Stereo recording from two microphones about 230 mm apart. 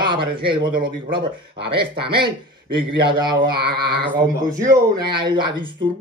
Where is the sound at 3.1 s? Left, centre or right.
Centre.